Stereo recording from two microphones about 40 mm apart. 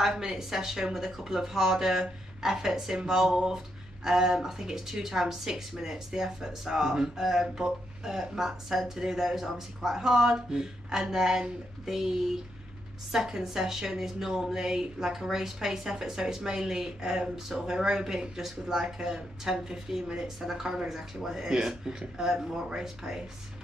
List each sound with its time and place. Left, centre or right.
0.0 s speech: centre